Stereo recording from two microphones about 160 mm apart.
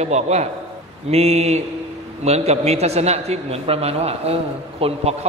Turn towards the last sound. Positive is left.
turn(degrees=-35)  # may be behind; listen again after turning